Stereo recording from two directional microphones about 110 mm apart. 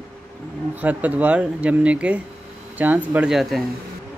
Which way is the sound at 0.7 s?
15° right (ahead or behind).